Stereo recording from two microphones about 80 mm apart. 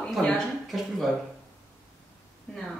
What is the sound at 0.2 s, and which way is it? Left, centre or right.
Speech, centre.